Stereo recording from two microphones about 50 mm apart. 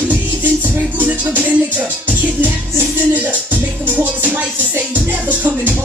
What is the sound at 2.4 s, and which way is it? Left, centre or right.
Music, right.